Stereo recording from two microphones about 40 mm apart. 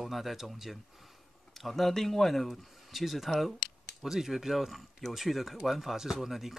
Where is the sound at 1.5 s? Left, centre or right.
Centre.